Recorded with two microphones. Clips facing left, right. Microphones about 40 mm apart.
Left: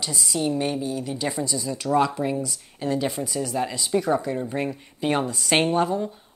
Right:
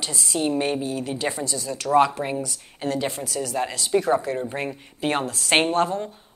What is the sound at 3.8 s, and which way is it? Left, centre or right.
Speech, right.